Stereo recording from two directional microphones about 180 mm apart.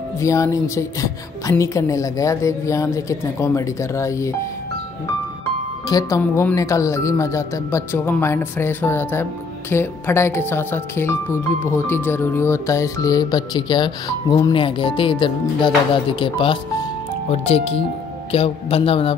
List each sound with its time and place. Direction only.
0.2 s speech: 15° left (ahead or behind)
5.9 s speech: 20° left (ahead or behind)